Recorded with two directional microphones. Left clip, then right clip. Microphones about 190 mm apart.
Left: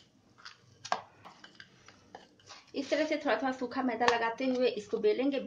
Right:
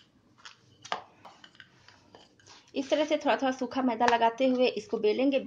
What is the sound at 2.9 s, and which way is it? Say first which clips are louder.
Speech: right 4 dB; 30° right (ahead or behind).